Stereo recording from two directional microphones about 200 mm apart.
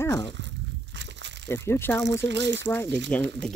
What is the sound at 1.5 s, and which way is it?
Speech, 10° left (ahead or behind).